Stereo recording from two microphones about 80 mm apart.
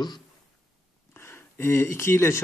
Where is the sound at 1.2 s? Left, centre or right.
Left.